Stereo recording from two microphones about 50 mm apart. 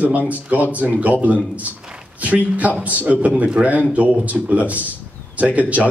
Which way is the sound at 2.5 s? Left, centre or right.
Right.